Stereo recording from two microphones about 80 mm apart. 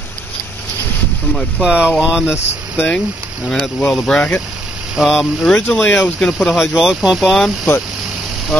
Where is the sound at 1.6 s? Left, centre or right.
Centre.